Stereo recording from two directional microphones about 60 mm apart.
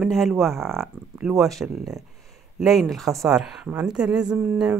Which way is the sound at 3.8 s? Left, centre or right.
Centre.